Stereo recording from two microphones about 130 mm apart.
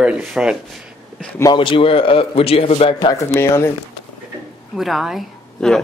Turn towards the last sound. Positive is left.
turn(degrees=0)  # may be behind; listen again after turning